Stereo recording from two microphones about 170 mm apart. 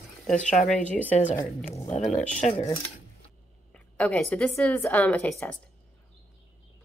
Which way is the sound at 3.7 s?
5° left (ahead or behind).